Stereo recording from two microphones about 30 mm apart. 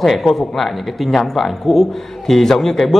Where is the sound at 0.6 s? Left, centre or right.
Centre.